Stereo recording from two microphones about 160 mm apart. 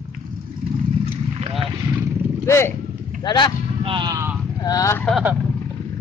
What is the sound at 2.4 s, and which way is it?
Speech, 15° left (ahead or behind).